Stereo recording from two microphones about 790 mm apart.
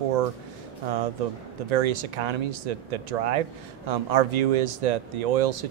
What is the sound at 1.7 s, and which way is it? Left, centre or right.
Speech, right.